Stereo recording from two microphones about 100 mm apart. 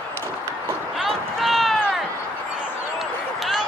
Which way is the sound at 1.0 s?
Centre (ahead or behind).